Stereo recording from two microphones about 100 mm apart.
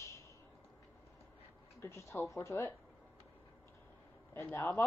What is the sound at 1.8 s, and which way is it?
Speech, 30° left (ahead or behind).